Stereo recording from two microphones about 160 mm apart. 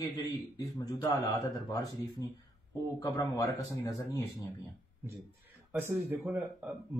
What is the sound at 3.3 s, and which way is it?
Speech, 20° left (ahead or behind).